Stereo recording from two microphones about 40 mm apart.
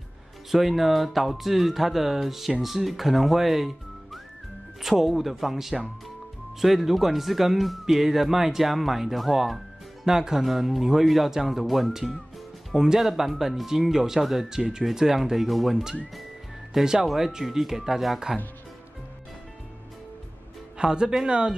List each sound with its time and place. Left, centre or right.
0.5 s speech: centre
17.0 s speech: centre
20.7 s speech: right